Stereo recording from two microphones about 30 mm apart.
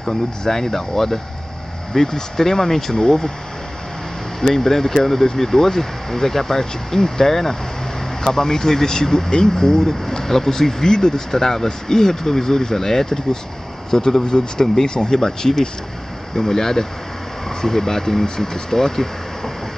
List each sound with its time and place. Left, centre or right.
0.4 s speech: centre
4.4 s speech: centre